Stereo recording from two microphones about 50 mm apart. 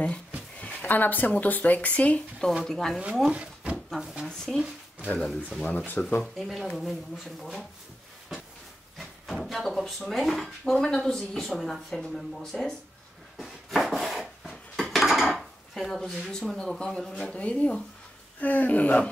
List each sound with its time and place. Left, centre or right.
0.6 s a sound: left
0.8 s speech: left
2.6 s speech: centre
4.0 s speech: centre
4.3 s speech: centre
5.7 s speech: left
6.2 s speech: centre
8.9 s speech: centre
13.4 s a sound: centre
14.8 s dishes: centre
15.7 s speech: centre; by 19.0 s left